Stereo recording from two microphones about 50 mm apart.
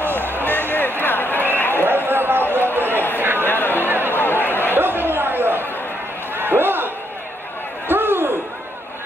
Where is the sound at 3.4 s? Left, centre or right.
Left.